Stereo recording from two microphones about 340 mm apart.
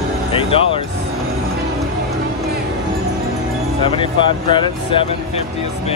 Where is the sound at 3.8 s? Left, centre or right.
Centre.